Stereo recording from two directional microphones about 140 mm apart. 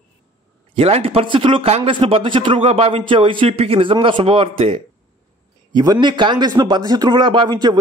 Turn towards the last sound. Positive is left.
turn(degrees=-30)  # may be behind; listen again after turning